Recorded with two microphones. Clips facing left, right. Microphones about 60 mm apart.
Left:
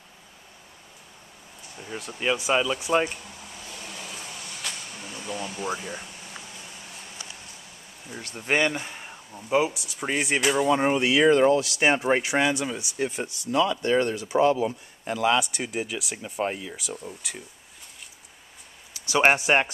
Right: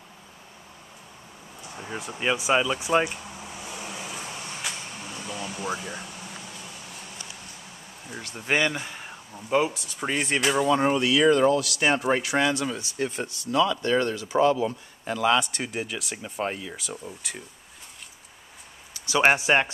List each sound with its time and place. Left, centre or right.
1.9 s air conditioning: centre
4.3 s a sound: right
5.1 s air conditioning: centre
5.8 s a sound: centre
8.5 s speech: centre
19.4 s speech: centre